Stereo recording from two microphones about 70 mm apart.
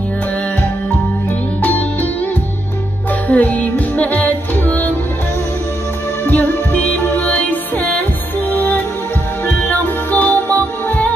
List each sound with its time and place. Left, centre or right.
1.6 s music: left
3.3 s music: left
6.2 s music: left
6.8 s music: left